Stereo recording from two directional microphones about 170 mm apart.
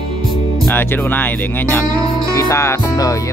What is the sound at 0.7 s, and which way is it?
Speech, 10° left (ahead or behind).